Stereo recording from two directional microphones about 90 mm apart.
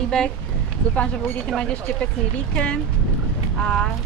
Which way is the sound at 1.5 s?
10° left (ahead or behind).